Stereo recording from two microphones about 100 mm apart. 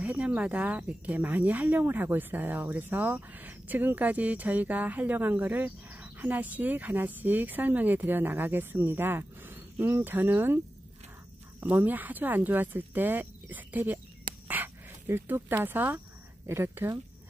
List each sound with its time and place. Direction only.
0.0 s speech: 15° right (ahead or behind)
11.7 s speech: 20° right (ahead or behind)